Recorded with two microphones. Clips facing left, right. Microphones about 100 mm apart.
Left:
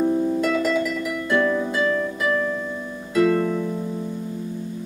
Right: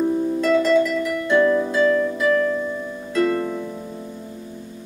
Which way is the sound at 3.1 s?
5° left (ahead or behind).